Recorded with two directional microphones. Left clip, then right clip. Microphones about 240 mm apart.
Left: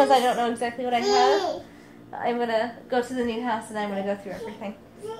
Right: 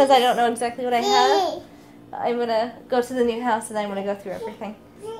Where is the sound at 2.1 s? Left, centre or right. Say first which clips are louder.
Right 3 dB; centre.